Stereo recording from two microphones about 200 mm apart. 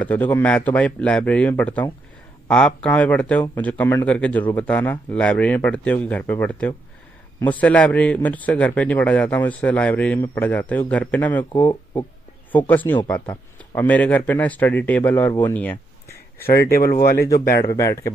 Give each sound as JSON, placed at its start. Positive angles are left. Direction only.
{"t": 0.0, "sound": "a man's voice", "side_deg": 10}
{"t": 16.4, "sound": "speech", "side_deg": 50}
{"t": 17.7, "sound": "a man's voice", "side_deg": 15}